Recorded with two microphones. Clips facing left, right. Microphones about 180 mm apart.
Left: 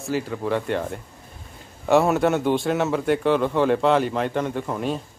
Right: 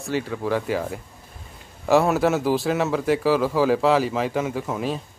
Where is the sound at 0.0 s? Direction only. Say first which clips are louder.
Even; centre (ahead or behind).